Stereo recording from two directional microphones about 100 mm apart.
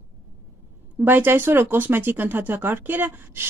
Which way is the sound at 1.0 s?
20° right (ahead or behind).